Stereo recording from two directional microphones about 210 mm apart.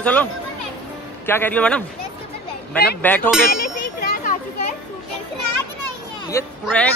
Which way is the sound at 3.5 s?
45° left (ahead or behind).